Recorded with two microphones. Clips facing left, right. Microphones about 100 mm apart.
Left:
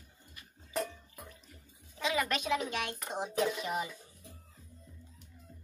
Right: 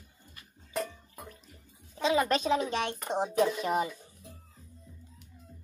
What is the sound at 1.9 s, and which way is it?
Speech, 30° right (ahead or behind).